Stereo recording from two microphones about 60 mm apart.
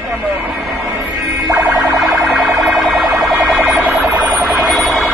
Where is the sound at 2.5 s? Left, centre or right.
Centre.